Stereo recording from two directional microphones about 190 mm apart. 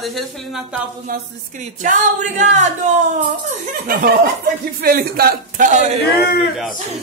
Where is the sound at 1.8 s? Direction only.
40° right (ahead or behind).